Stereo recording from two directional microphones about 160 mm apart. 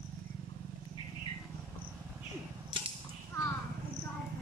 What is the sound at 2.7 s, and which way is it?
Arrow, 30° right (ahead or behind).